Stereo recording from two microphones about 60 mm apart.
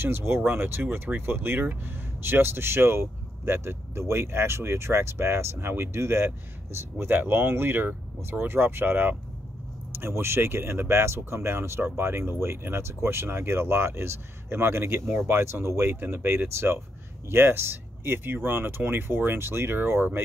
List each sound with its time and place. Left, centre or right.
0.0 s speech: right